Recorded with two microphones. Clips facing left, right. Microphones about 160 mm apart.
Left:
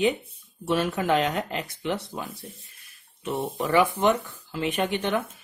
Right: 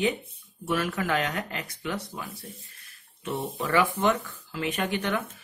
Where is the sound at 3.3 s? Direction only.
15° left (ahead or behind).